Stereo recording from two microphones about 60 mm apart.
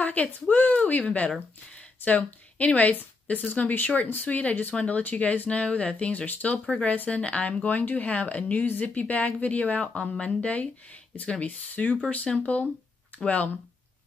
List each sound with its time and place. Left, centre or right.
0.0 s speech: left